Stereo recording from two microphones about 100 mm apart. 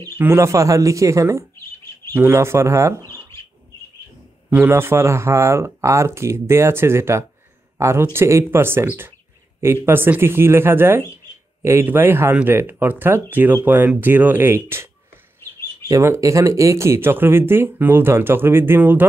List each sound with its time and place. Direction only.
0.2 s speech: 25° right (ahead or behind)
3.0 s bird: 30° left (ahead or behind)
4.5 s speech: 20° right (ahead or behind)
15.9 s speech: 30° right (ahead or behind)